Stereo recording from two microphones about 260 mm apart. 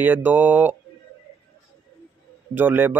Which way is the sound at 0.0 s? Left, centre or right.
Centre.